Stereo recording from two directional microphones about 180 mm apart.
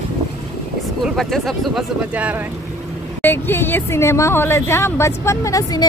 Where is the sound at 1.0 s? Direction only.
Centre (ahead or behind).